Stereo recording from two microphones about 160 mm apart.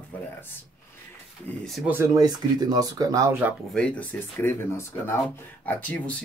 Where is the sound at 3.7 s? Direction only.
10° left (ahead or behind).